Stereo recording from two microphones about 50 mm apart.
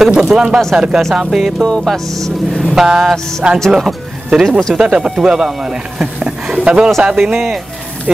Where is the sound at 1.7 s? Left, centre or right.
Centre.